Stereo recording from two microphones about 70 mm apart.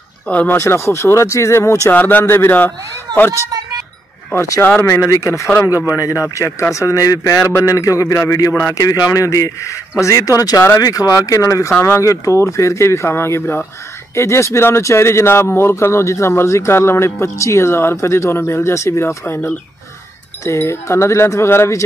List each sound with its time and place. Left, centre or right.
0.3 s speech: left
0.6 s a man's voice: left
1.9 s speech: left
4.6 s speech: left
4.8 s a man's voice: left
8.8 s a man's voice: left